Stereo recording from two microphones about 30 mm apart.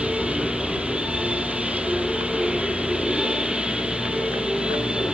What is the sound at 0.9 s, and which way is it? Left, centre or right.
Train, right.